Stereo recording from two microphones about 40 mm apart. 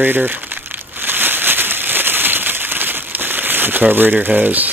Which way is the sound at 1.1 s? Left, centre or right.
Right.